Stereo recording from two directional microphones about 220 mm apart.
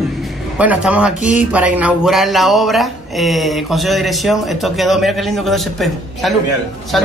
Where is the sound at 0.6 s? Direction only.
5° right (ahead or behind).